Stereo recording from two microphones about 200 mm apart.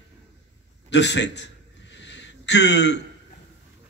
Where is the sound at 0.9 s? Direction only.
60° left (ahead or behind).